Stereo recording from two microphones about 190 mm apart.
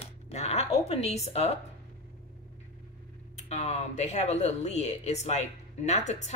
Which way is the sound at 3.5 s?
35° left (ahead or behind).